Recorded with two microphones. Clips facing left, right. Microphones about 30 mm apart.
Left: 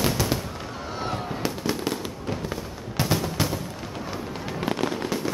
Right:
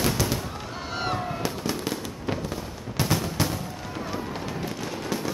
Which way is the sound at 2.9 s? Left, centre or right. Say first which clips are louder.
Left 1 dB; centre.